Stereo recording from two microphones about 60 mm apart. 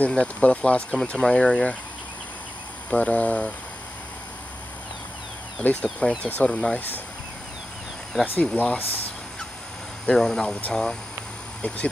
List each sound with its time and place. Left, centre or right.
0.1 s speech: centre
2.9 s speech: left
5.6 s speech: left
8.4 s speech: left
10.0 s speech: centre